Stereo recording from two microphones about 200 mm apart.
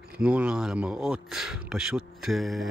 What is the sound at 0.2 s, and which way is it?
Speech, 5° right (ahead or behind).